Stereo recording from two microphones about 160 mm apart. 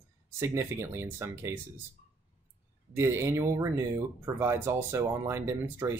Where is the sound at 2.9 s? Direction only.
15° right (ahead or behind).